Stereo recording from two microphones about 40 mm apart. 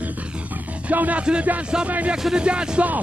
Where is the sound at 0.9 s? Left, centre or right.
Right.